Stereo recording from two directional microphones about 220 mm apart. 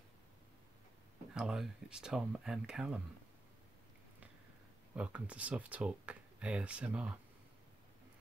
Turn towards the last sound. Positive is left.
turn(degrees=-5)  # may be behind; listen again after turning